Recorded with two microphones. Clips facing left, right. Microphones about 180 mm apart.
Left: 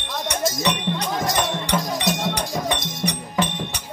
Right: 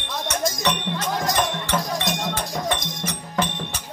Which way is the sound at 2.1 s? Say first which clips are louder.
Left 3 dB; centre (ahead or behind).